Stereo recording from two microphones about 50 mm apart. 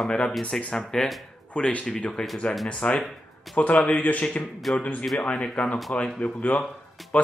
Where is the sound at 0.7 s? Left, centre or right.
Centre.